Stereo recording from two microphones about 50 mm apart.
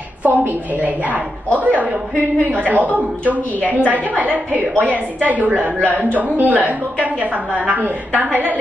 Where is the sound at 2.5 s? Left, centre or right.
Right.